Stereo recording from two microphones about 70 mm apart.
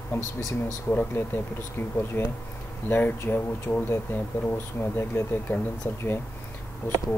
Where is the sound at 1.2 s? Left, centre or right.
Left.